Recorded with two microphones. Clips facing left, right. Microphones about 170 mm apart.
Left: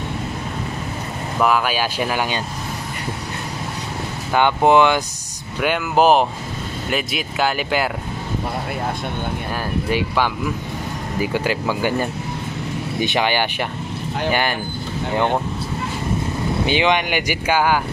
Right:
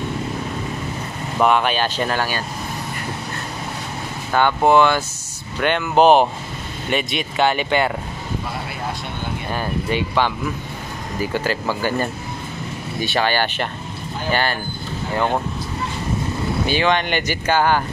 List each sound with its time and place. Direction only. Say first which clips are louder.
1.4 s speech: right 1 dB; 5° left (ahead or behind)
4.3 s speech: left 1 dB; 15° left (ahead or behind)
5.6 s speech: right 1 dB; 5° left (ahead or behind)
9.8 s speech: even; 5° left (ahead or behind)
16.6 s speech: left 1 dB; 15° left (ahead or behind)